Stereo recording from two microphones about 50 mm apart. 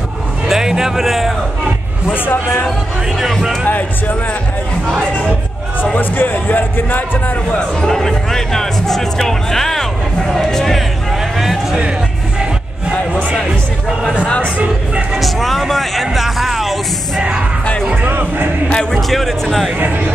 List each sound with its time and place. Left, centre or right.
0.5 s music: centre
3.2 s speech: centre
3.6 s speech: left
5.9 s a man's voice: left
7.8 s speech: centre
15.1 s speech: centre
18.0 s music: right
18.7 s speech: centre
18.9 s speech: centre